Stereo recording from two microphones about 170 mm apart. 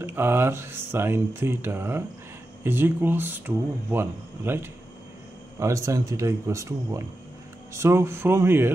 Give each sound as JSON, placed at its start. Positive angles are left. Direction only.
{"t": 0.0, "sound": "speech", "side_deg": -15}